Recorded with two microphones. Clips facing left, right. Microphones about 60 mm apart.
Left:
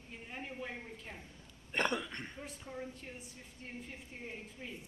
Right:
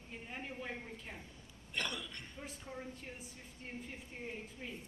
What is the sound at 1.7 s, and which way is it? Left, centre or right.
Speech, left.